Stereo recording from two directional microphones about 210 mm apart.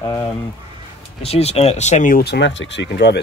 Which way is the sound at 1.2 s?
30° left (ahead or behind).